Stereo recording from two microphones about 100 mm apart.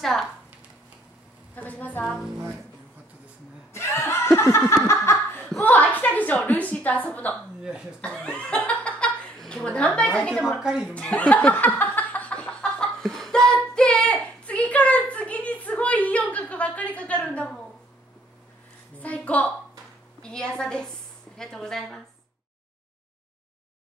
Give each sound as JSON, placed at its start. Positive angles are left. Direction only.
{"t": 0.0, "sound": "a woman's voice", "side_deg": 5}
{"t": 1.5, "sound": "a woman's voice", "side_deg": 15}
{"t": 2.0, "sound": "a woman's voice", "side_deg": -5}
{"t": 3.7, "sound": "laughter", "side_deg": 25}
{"t": 5.6, "sound": "a sound", "side_deg": 15}
{"t": 8.0, "sound": "chuckle", "side_deg": 10}
{"t": 10.6, "sound": "speech", "side_deg": -10}
{"t": 10.9, "sound": "laughter", "side_deg": 10}
{"t": 13.7, "sound": "a sound", "side_deg": 10}
{"t": 18.9, "sound": "a woman's voice", "side_deg": 15}